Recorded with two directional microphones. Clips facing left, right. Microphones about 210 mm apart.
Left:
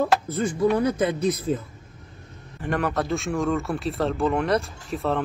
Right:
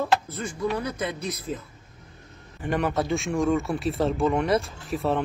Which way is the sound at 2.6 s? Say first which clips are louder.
Even; centre (ahead or behind).